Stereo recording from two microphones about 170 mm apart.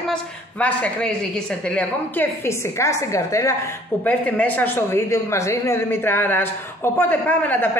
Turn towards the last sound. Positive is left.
turn(degrees=10)  # may be behind; listen again after turning